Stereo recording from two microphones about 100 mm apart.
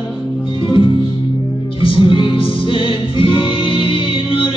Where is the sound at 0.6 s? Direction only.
60° left (ahead or behind).